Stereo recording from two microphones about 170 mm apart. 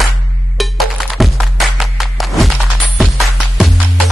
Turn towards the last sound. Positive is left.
turn(degrees=0)  # may be behind; listen again after turning